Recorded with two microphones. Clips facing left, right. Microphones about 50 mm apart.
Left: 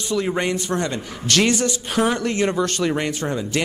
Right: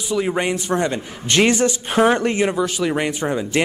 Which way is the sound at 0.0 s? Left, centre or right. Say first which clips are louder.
Right 1 dB; centre.